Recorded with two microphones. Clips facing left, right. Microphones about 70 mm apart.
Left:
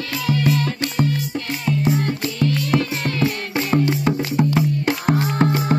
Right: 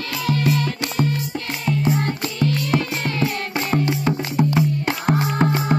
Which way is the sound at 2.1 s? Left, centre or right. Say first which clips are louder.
Left 1 dB; centre.